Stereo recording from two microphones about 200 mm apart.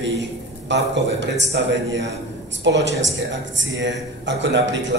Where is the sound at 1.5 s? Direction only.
65° right (ahead or behind).